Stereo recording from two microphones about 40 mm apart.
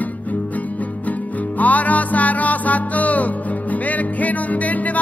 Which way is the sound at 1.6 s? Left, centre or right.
Left.